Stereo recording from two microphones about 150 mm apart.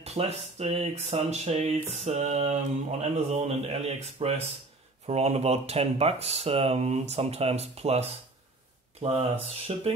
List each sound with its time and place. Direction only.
0.0 s speech: 45° right (ahead or behind)